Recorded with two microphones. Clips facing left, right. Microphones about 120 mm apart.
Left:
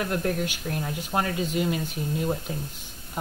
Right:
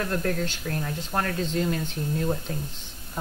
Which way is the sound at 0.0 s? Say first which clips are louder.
Even; 15° left (ahead or behind).